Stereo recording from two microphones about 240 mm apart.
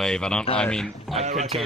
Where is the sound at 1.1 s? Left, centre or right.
Right.